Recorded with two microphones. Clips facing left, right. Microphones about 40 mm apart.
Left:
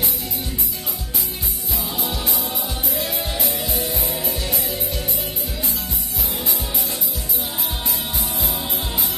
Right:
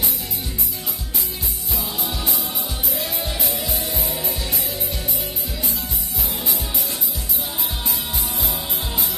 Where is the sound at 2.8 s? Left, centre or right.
Left.